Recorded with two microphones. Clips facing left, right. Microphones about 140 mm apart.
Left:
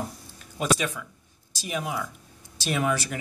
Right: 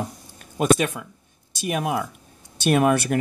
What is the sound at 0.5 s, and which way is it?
Speech, 55° right (ahead or behind).